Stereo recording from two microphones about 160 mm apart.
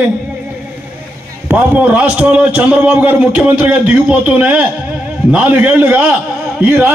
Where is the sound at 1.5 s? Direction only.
10° right (ahead or behind).